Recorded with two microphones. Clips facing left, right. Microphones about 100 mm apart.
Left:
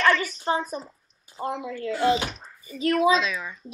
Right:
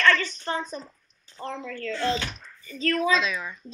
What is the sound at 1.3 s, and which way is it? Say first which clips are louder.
A woman's voice: left 4 dB; 15° left (ahead or behind).